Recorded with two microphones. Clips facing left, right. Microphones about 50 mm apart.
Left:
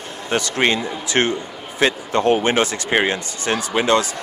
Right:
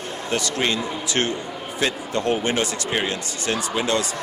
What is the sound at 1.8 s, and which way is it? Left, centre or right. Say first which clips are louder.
Speech: left 6 dB; left.